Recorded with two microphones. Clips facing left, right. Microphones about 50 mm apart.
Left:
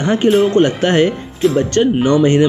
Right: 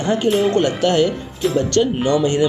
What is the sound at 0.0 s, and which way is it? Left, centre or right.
Speech, left.